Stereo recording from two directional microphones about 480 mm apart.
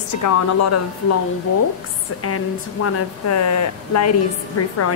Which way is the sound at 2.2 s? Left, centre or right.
Left.